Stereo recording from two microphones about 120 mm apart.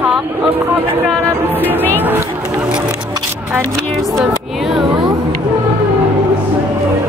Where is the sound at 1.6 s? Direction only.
15° left (ahead or behind).